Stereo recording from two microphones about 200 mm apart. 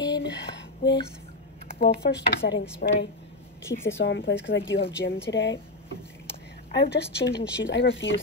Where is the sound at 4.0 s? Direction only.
65° left (ahead or behind).